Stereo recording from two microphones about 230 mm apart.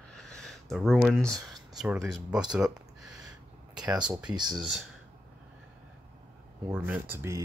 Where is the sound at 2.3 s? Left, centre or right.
Centre.